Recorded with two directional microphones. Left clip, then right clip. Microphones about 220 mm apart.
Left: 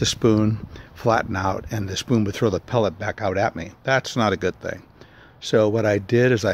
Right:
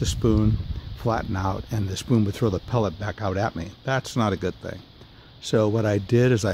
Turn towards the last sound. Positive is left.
turn(degrees=-5)  # may be behind; listen again after turning